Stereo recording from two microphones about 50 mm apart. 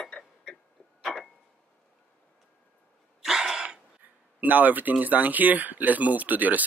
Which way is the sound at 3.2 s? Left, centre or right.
Centre.